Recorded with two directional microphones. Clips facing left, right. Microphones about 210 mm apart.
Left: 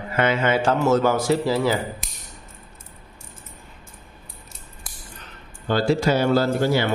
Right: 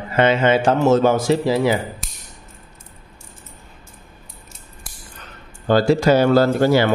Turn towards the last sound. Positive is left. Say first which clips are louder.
# right 5 dB
turn(degrees=-80)